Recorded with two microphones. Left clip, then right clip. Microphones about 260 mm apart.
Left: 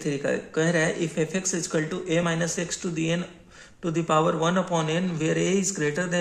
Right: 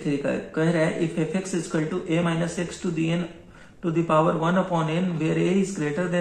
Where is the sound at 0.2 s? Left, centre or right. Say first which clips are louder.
Even; left.